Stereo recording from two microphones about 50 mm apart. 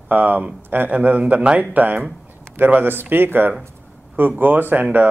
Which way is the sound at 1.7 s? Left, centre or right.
Right.